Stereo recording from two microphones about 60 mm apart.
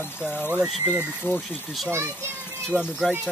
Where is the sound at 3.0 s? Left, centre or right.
Centre.